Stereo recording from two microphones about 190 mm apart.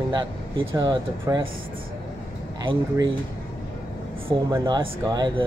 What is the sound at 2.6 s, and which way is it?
Speech, 25° right (ahead or behind).